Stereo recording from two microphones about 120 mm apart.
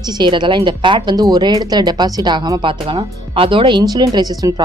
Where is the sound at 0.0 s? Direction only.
40° right (ahead or behind).